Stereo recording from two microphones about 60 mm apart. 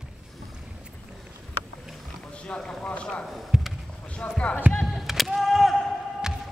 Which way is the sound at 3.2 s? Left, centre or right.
Centre.